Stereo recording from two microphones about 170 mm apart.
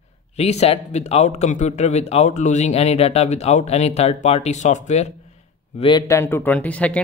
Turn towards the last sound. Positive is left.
turn(degrees=10)  # may be behind; listen again after turning